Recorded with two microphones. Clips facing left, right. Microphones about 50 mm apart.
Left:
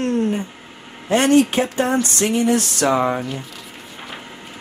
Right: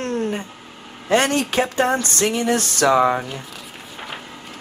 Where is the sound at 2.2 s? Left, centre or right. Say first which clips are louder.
Left 1 dB; right.